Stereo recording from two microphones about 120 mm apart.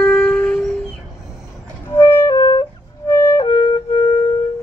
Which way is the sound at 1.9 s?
25° left (ahead or behind).